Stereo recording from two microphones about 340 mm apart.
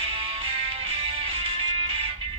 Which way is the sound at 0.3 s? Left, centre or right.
Centre.